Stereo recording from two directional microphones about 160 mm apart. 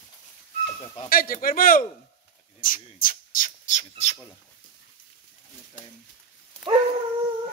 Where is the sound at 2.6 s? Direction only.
60° left (ahead or behind).